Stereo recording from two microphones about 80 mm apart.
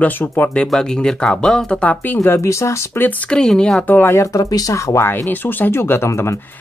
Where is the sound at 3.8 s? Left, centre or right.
Left.